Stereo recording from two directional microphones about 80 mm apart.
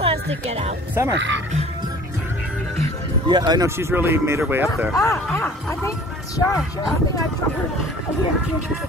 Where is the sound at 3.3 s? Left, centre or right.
Right.